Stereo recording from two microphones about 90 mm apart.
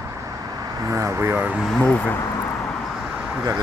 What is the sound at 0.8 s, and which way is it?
Speech, 35° right (ahead or behind).